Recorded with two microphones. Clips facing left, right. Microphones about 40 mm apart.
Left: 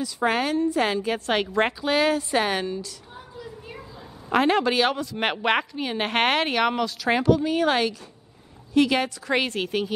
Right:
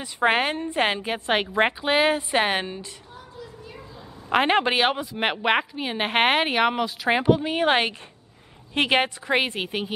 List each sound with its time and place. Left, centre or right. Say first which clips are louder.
0.0 s a woman's voice: right 2 dB; right
4.3 s a woman's voice: even; right
5.1 s a woman's voice: right 1 dB; centre; by 9.1 s right
9.3 s a woman's voice: left 1 dB; right